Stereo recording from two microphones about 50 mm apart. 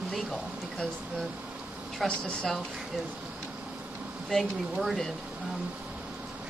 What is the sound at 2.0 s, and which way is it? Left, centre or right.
Speech, centre.